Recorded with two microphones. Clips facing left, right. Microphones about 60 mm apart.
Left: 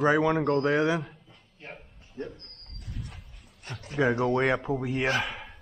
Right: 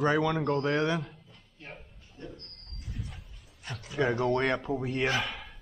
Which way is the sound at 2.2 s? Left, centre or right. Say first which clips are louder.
Left 7 dB; left.